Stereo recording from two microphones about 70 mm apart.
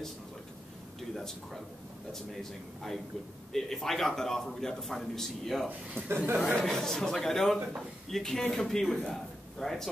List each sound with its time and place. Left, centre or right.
1.1 s a man's voice: centre
3.5 s a man's voice: centre
6.0 s speech: right
6.3 s a man's voice: centre